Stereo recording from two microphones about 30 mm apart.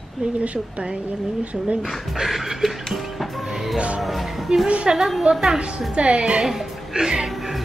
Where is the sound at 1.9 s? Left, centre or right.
Centre.